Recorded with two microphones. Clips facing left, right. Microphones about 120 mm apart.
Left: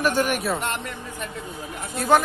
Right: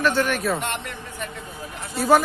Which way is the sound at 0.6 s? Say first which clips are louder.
Left 1 dB; 35° left (ahead or behind).